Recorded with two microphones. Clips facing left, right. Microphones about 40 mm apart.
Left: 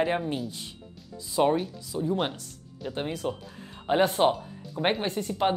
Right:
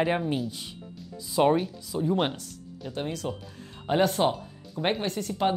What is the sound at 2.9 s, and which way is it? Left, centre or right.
Speech, centre.